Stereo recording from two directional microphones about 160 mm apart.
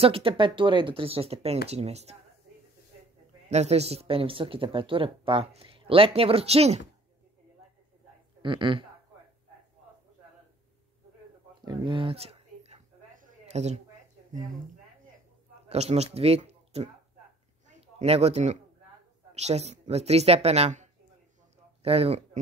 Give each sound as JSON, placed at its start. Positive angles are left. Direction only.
{"t": 0.0, "sound": "speech", "side_deg": -35}
{"t": 3.4, "sound": "speech", "side_deg": -45}
{"t": 8.4, "sound": "speech", "side_deg": -30}
{"t": 11.6, "sound": "a sound", "side_deg": -30}
{"t": 15.7, "sound": "speech", "side_deg": -40}
{"t": 17.9, "sound": "speech", "side_deg": -40}